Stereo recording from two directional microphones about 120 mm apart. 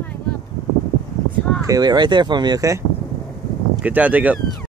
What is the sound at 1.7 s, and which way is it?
Speech, 35° right (ahead or behind).